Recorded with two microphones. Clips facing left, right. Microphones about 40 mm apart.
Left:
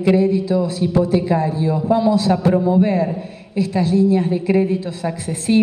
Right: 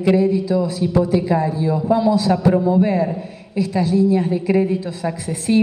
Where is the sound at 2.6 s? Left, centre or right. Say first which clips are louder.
Left 1 dB; left.